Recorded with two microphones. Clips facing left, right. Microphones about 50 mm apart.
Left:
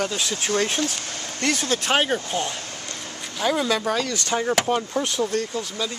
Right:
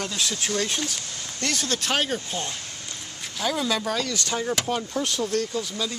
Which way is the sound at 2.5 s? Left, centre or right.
Left.